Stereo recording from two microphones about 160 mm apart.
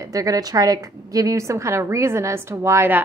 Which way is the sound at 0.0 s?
20° right (ahead or behind).